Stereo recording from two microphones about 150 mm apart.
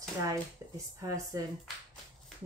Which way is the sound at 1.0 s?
25° right (ahead or behind).